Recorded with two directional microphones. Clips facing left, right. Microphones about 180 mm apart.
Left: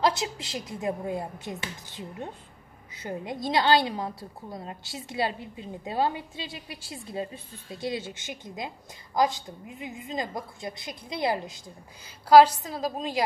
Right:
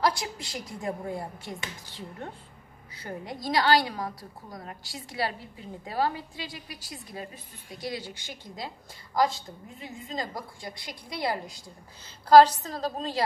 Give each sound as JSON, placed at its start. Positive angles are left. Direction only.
{"t": 0.0, "sound": "a woman's voice", "side_deg": 20}
{"t": 12.0, "sound": "a woman's voice", "side_deg": 10}